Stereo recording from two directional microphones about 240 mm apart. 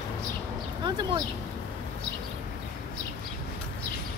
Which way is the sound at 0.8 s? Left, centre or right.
Centre.